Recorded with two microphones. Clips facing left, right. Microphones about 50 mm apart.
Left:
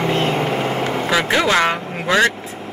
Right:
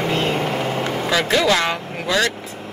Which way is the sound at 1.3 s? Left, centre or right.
Left.